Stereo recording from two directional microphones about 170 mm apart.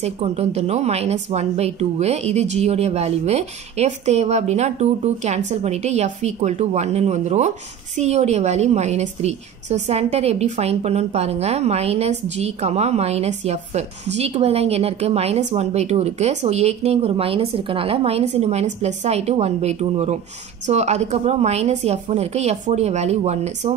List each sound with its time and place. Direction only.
0.0 s a woman's voice: 40° right (ahead or behind)